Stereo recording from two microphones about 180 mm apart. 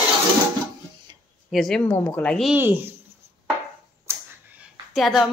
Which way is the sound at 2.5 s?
10° right (ahead or behind).